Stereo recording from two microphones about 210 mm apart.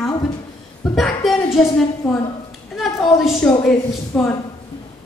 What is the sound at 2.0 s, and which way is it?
A woman's voice, 5° left (ahead or behind).